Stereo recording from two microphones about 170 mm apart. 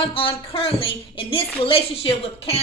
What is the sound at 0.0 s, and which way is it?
A woman's voice, 30° left (ahead or behind).